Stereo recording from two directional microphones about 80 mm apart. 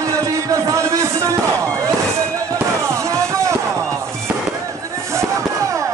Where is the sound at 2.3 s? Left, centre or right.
Right.